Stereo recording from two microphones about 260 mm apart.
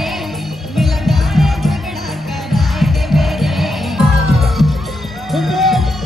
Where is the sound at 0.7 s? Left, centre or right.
Centre.